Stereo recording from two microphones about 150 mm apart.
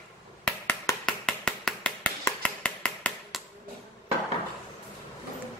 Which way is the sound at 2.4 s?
5° left (ahead or behind).